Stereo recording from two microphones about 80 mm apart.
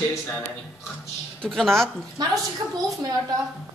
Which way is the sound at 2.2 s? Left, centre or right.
Right.